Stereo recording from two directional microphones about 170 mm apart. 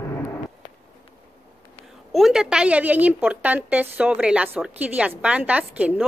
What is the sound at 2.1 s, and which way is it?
A woman's voice, centre (ahead or behind).